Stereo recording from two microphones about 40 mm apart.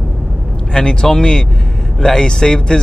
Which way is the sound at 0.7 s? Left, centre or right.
Centre.